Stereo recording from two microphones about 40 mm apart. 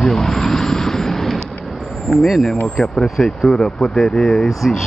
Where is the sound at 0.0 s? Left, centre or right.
Centre.